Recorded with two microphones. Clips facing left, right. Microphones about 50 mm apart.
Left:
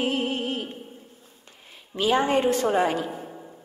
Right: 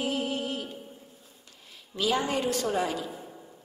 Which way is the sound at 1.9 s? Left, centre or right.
Left.